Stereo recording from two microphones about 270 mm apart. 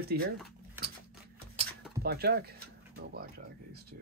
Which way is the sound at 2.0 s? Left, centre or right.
Right.